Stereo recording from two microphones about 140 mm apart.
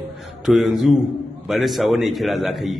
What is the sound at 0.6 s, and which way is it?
A man's voice, centre (ahead or behind).